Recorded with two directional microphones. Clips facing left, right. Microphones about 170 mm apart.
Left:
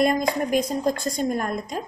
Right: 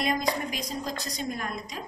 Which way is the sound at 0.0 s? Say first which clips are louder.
Left 7 dB; 50° left (ahead or behind).